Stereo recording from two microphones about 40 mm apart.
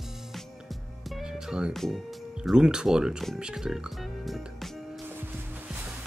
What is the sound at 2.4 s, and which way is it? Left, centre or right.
Speech, centre.